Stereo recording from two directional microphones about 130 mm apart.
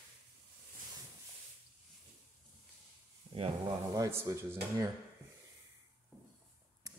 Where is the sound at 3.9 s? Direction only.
20° right (ahead or behind).